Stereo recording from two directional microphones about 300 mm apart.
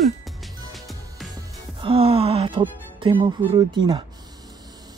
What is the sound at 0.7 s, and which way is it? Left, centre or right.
Music, centre.